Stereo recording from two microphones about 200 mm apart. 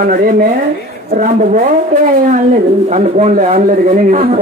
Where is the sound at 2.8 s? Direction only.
35° right (ahead or behind).